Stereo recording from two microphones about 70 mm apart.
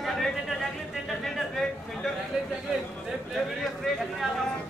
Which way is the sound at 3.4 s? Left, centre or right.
Centre.